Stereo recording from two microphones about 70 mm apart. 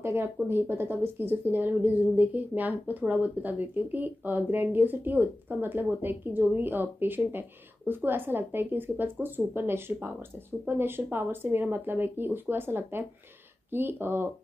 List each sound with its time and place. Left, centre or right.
0.0 s a woman's voice: right